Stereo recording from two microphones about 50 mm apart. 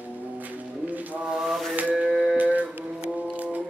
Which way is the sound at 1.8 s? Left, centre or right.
Right.